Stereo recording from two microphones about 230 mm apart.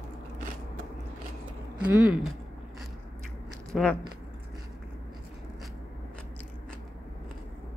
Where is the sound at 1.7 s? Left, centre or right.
Centre.